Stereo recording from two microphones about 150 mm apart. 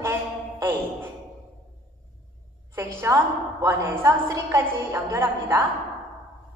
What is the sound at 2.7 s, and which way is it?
A woman's voice, 20° right (ahead or behind).